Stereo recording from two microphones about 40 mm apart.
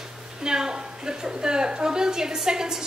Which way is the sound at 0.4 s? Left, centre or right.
Centre.